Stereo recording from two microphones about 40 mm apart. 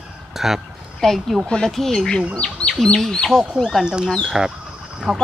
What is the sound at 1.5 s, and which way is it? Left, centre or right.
Speech, left.